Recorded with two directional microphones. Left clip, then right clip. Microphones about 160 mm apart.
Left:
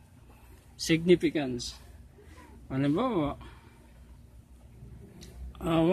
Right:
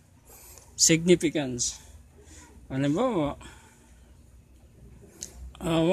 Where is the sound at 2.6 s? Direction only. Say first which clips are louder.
Right 3 dB; 30° right (ahead or behind).